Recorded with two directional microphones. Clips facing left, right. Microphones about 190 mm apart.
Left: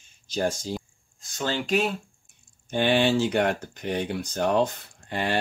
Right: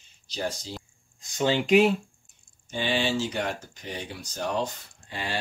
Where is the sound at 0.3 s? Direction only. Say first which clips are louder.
Left 5 dB; 50° left (ahead or behind).